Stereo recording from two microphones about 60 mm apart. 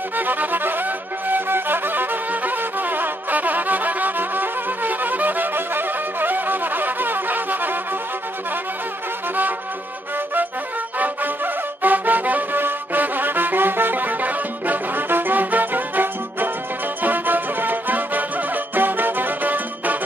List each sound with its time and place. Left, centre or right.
0.2 s music: right
11.0 s music: right